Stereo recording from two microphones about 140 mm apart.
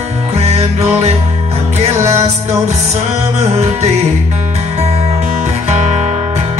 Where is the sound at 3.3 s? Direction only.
50° right (ahead or behind).